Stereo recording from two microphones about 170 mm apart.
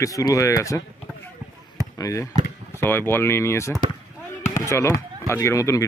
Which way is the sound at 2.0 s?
20° left (ahead or behind).